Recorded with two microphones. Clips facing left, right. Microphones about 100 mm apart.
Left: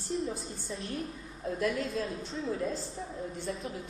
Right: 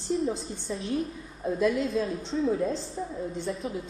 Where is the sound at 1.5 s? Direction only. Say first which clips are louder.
Right 6 dB; 20° right (ahead or behind).